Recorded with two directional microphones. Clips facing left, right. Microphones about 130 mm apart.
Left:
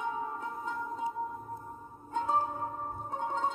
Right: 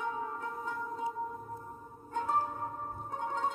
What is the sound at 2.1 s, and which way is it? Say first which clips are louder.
Music: left 2 dB; 20° left (ahead or behind).